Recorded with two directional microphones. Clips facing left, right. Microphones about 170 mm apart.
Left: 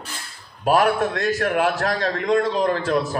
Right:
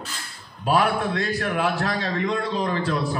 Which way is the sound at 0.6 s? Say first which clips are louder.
Left 3 dB; 45° left (ahead or behind).